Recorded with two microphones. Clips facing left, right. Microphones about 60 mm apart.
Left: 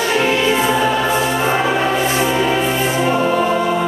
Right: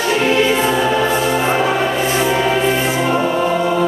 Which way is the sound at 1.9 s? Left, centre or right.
Centre.